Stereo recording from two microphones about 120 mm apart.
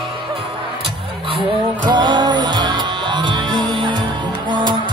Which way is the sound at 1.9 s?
40° right (ahead or behind).